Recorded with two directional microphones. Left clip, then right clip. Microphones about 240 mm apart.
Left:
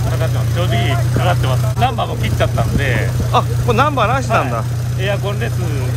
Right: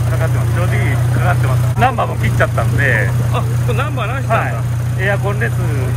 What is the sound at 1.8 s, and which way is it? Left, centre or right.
Speech, centre.